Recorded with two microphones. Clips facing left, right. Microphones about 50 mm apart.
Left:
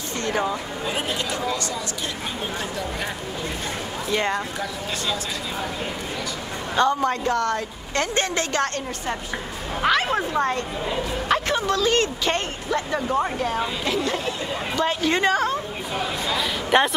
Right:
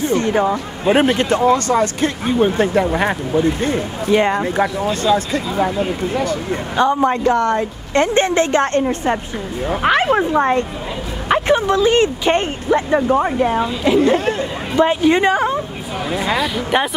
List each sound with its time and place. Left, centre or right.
0.0 s speech: right
0.8 s speech: right
4.1 s a woman's voice: right
5.0 s speech: right
6.8 s a woman's voice: right
16.7 s a woman's voice: centre